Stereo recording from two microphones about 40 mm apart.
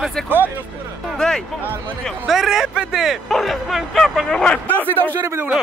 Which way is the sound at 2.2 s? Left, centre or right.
Centre.